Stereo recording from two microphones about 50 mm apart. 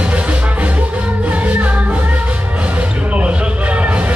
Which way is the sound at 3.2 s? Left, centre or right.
Right.